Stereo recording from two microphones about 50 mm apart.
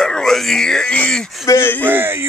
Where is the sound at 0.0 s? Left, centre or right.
Centre.